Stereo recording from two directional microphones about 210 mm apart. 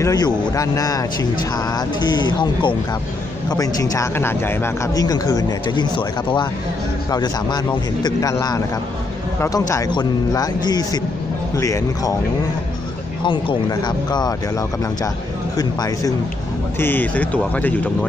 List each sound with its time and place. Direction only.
0.0 s a man's voice: 15° left (ahead or behind)
13.2 s speech: 25° left (ahead or behind)
15.5 s a man's voice: 15° left (ahead or behind)